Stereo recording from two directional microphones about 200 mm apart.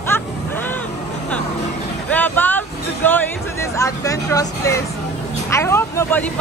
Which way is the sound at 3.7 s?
15° left (ahead or behind).